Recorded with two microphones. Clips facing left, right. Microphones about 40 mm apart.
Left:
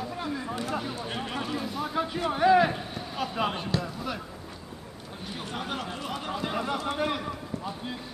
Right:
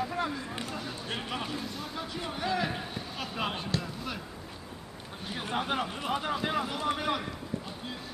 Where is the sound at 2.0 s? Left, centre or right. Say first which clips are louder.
Left 10 dB; left.